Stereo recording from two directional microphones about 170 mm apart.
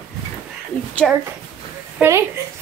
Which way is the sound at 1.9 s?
15° right (ahead or behind).